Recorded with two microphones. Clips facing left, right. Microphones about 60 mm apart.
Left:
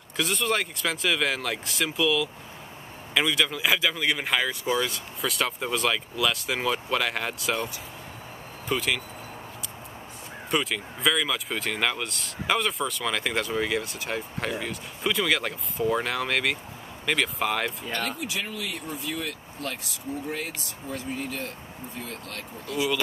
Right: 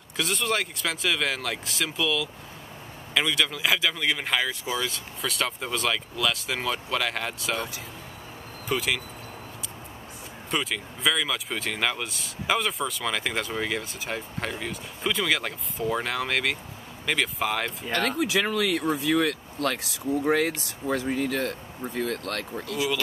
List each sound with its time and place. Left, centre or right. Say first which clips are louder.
0.2 s speech: left 1 dB; centre
8.6 s speech: even; centre
10.5 s speech: left 2 dB; centre
17.9 s speech: right 10 dB; right